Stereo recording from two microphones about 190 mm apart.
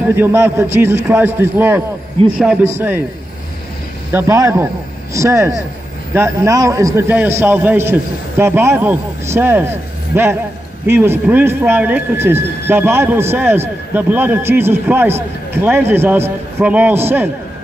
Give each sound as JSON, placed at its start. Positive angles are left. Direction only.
{"t": 0.1, "sound": "a man's voice", "side_deg": -10}
{"t": 4.1, "sound": "a man's voice", "side_deg": -15}